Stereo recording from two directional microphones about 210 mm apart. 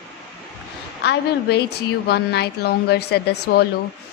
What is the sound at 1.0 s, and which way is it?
A woman's voice, 50° left (ahead or behind).